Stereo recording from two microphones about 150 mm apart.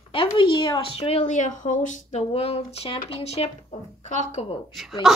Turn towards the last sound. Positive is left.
turn(degrees=0)  # may be behind; listen again after turning